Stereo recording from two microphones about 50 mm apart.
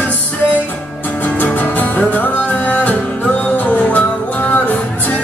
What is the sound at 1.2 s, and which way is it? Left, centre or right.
Music, left.